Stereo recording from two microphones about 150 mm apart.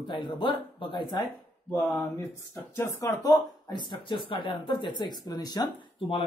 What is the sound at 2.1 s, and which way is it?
Speech, 20° left (ahead or behind).